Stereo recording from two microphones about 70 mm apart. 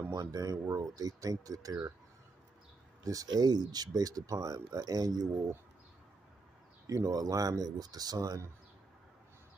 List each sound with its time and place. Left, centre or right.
0.1 s speech: right
3.0 s speech: right
6.9 s speech: right